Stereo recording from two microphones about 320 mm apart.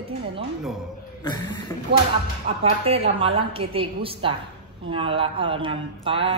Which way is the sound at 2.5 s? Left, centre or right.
Centre.